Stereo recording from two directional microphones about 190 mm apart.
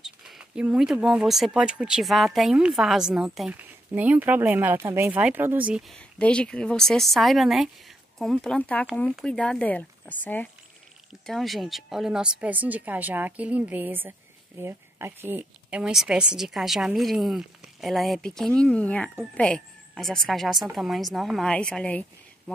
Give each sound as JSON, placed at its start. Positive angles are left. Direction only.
{"t": 0.0, "sound": "a woman's voice", "side_deg": -5}